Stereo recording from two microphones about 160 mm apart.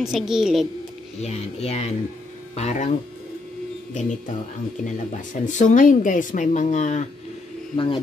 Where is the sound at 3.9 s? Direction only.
50° left (ahead or behind).